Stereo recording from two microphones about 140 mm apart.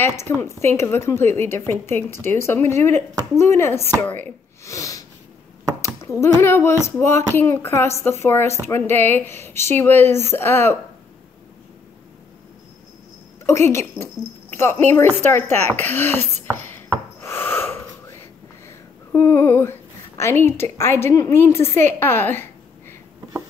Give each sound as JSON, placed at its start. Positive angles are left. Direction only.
{"t": 0.0, "sound": "speech", "side_deg": 20}
{"t": 4.6, "sound": "snort", "side_deg": 20}
{"t": 5.9, "sound": "speech", "side_deg": 20}
{"t": 13.5, "sound": "a woman's voice", "side_deg": 20}
{"t": 17.2, "sound": "gasp", "side_deg": 15}
{"t": 19.1, "sound": "a woman's voice", "side_deg": 20}